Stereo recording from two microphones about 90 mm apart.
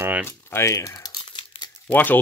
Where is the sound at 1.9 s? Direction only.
20° left (ahead or behind).